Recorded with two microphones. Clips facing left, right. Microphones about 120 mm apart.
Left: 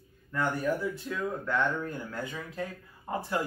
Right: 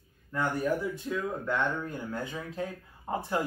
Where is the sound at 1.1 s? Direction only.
15° right (ahead or behind).